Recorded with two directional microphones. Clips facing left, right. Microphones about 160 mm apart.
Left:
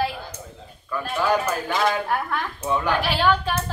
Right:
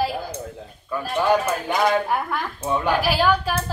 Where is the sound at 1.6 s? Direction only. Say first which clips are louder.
Right 3 dB; 20° right (ahead or behind).